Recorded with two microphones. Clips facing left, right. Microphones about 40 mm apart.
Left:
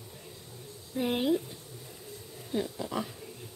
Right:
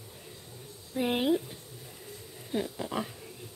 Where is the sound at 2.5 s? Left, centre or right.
Centre.